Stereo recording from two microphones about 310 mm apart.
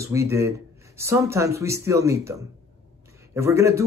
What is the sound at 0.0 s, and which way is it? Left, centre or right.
A man's voice, centre.